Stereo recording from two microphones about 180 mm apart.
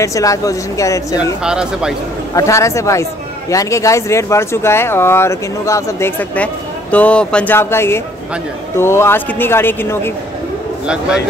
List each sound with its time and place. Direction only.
0.0 s speech: 20° left (ahead or behind)
1.4 s speech: 5° right (ahead or behind)
2.3 s speech: 15° left (ahead or behind)